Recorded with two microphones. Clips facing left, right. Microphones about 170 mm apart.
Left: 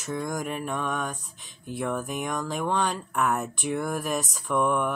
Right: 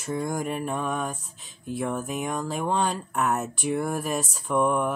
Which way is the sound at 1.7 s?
25° right (ahead or behind).